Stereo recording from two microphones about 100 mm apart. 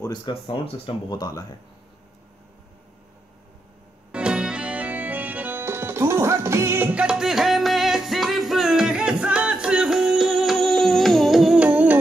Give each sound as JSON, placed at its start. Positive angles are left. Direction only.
{"t": 0.3, "sound": "speech", "side_deg": 70}
{"t": 4.1, "sound": "music", "side_deg": -10}
{"t": 6.9, "sound": "music", "side_deg": -10}